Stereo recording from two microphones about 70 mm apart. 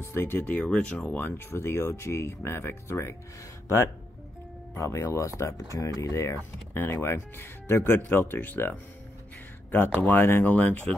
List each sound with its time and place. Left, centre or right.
0.0 s speech: left
0.5 s speech: centre
1.2 s speech: left
10.0 s speech: left